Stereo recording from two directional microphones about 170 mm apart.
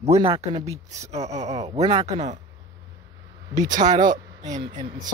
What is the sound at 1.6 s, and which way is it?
Speech, 35° right (ahead or behind).